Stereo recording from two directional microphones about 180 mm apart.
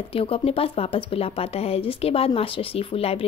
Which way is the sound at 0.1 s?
30° left (ahead or behind).